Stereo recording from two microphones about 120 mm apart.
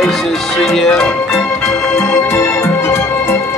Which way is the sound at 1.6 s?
25° left (ahead or behind).